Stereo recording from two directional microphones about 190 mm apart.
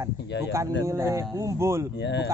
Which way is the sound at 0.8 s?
15° right (ahead or behind).